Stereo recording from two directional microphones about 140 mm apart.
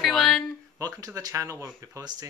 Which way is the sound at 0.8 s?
25° right (ahead or behind).